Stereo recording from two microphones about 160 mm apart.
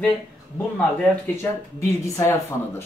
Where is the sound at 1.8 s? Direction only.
15° left (ahead or behind).